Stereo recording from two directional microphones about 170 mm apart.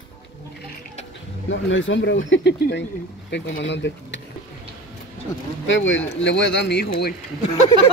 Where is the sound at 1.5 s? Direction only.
90° left.